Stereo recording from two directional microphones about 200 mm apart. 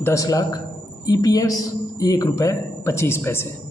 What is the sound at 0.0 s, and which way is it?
A man's voice, 15° left (ahead or behind).